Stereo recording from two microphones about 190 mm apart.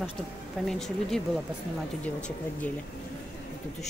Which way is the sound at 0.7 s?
Centre (ahead or behind).